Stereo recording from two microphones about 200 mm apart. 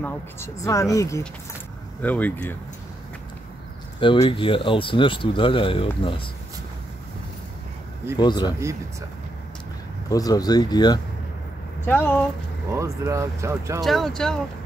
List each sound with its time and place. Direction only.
0.0 s speech: 10° left (ahead or behind)
4.0 s speech: 25° left (ahead or behind)
8.2 s speech: 20° left (ahead or behind)
10.0 s speech: 20° left (ahead or behind)
11.8 s speech: 10° left (ahead or behind)
12.7 s speech: 15° right (ahead or behind)
13.7 s speech: centre (ahead or behind)